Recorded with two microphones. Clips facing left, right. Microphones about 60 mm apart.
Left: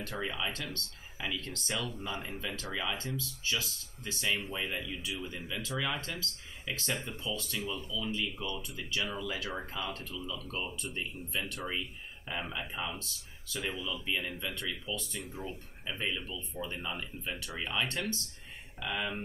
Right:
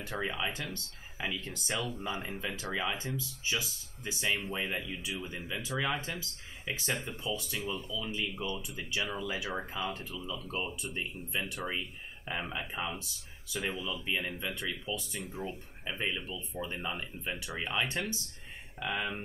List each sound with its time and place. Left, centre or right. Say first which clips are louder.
0.2 s speech: right 2 dB; centre